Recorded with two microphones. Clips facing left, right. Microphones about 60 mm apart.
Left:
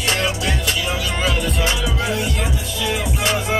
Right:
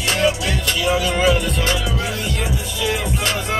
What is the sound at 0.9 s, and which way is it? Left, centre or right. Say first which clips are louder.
Music: right 5 dB; centre.